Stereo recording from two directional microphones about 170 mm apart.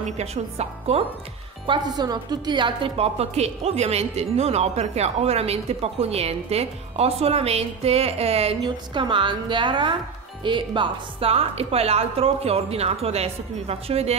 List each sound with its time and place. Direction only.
0.0 s a woman's voice: 40° right (ahead or behind)
2.0 s a woman's voice: 25° right (ahead or behind)